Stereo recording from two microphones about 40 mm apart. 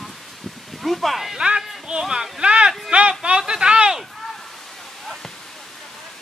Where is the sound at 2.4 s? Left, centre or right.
Right.